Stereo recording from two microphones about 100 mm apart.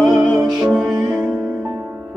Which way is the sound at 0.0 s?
5° right (ahead or behind).